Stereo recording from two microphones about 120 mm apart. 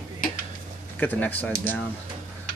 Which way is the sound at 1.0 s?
15° left (ahead or behind).